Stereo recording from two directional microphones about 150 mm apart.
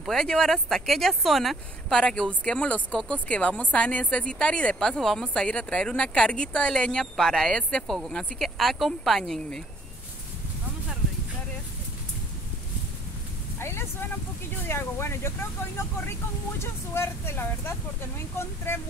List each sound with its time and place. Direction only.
0.0 s speech: centre (ahead or behind)
13.6 s a sound: 15° left (ahead or behind)
14.7 s speech: 15° left (ahead or behind)